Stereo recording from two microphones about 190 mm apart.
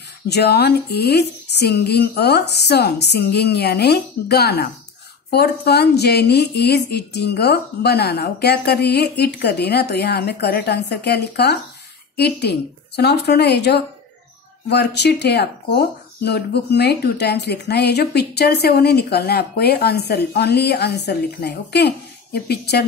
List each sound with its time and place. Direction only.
0.3 s a woman's voice: 60° left (ahead or behind)